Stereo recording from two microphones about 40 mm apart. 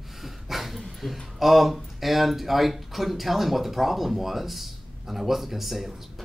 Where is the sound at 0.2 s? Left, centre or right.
Centre.